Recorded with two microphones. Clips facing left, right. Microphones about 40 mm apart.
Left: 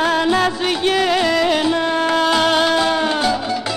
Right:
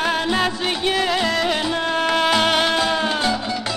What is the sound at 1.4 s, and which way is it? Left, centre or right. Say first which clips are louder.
Music: left 4 dB; centre.